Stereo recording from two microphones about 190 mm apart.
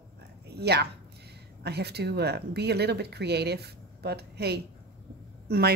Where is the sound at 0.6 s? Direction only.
60° right (ahead or behind).